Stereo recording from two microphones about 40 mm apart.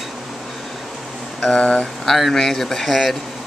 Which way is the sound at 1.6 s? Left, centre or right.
Left.